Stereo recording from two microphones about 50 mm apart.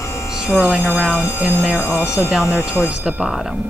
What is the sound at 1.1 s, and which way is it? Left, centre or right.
Speech, left.